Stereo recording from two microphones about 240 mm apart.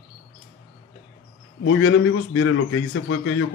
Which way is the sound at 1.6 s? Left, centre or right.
Left.